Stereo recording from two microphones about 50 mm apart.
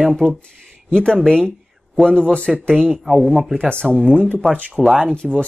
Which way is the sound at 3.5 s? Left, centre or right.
Centre.